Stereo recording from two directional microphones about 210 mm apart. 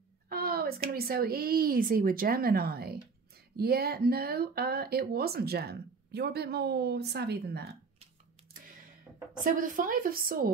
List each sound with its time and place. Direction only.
0.3 s a sound: 45° right (ahead or behind)
0.8 s speech: 45° right (ahead or behind)
9.4 s a woman's voice: 40° right (ahead or behind)